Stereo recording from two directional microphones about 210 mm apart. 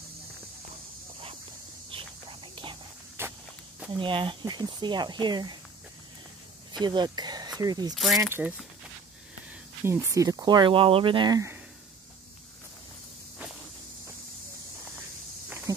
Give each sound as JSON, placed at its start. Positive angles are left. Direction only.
{"t": 1.9, "sound": "whispering", "side_deg": -25}
{"t": 3.2, "sound": "walk", "side_deg": -10}
{"t": 3.9, "sound": "speech", "side_deg": -25}
{"t": 6.8, "sound": "speech", "side_deg": -20}
{"t": 7.9, "sound": "speech", "side_deg": 0}
{"t": 9.8, "sound": "speech", "side_deg": -15}